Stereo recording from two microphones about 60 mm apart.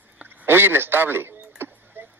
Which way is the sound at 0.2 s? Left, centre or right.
Right.